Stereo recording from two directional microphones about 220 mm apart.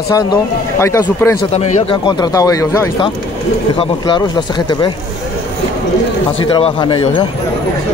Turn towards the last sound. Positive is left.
turn(degrees=20)  # may be behind; listen again after turning